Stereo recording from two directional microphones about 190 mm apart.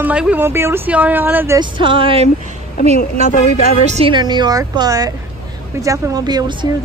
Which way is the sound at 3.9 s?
30° right (ahead or behind).